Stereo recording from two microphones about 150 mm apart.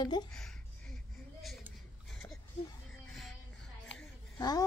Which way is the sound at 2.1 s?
5° left (ahead or behind).